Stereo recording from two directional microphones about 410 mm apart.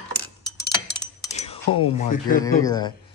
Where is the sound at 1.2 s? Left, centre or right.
Centre.